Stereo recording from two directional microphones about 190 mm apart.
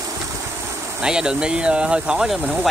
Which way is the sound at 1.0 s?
5° right (ahead or behind).